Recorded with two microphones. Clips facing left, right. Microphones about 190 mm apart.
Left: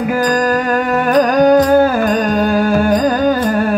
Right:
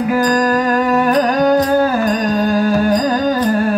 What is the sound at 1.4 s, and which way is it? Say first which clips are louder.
Music: left 5 dB; 50° left (ahead or behind).